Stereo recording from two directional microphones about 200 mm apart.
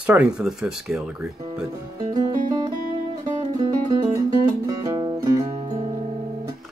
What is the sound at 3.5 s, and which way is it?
Music, 20° right (ahead or behind).